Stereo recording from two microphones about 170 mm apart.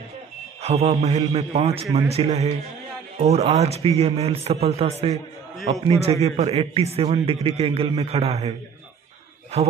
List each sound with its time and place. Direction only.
0.6 s a man's voice: 35° right (ahead or behind)